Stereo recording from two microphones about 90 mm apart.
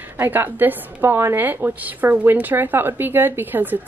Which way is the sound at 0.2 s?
25° right (ahead or behind).